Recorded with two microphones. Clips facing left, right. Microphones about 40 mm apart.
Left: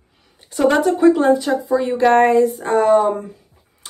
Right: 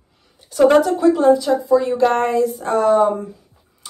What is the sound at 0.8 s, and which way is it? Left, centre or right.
Speech, centre.